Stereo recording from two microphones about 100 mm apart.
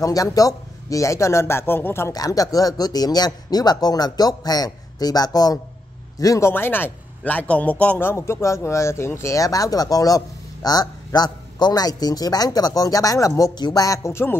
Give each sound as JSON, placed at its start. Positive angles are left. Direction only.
{"t": 0.0, "sound": "a man's voice", "side_deg": 35}
{"t": 2.1, "sound": "a man's voice", "side_deg": 40}
{"t": 6.5, "sound": "a man's voice", "side_deg": 20}